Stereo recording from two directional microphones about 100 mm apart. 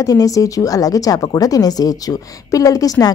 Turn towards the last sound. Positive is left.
turn(degrees=35)  # may be behind; listen again after turning